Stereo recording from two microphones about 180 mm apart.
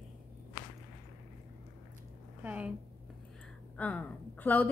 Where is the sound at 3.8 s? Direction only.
10° left (ahead or behind).